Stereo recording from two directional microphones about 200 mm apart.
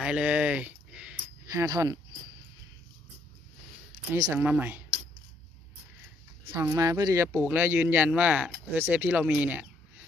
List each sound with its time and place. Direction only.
0.0 s a sound: 5° right (ahead or behind)
4.1 s speech: 10° right (ahead or behind)
6.5 s speech: 15° right (ahead or behind)